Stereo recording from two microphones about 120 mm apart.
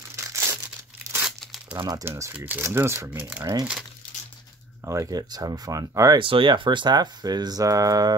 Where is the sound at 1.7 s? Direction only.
25° right (ahead or behind).